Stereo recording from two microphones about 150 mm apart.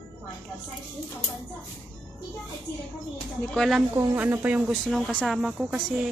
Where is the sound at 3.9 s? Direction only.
10° right (ahead or behind).